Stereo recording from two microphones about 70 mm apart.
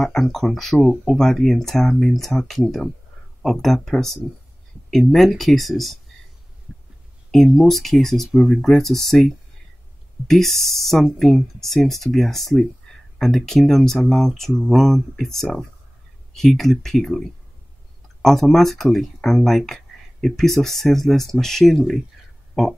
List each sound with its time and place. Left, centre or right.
0.0 s speech: centre
7.2 s speech: centre
12.9 s a sound: centre
13.2 s speech: centre